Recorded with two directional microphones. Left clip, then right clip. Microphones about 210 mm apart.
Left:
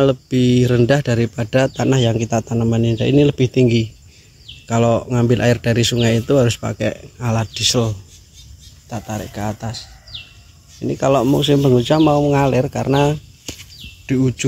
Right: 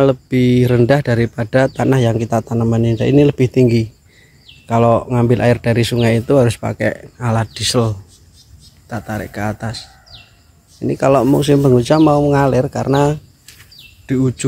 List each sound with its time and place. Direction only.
0.0 s speech: 10° right (ahead or behind)